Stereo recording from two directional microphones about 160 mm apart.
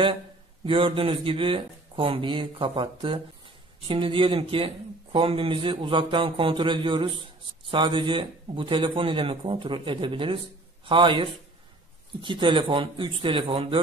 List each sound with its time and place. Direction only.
0.7 s speech: 35° right (ahead or behind)